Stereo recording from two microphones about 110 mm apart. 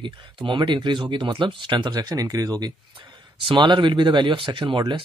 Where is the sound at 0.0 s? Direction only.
45° right (ahead or behind).